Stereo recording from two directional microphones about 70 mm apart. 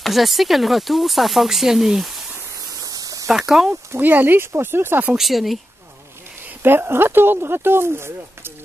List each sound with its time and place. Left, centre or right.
0.0 s speech: centre
2.8 s a sound: right
3.3 s speech: centre
3.9 s speech: right
5.1 s speech: centre
6.6 s speech: right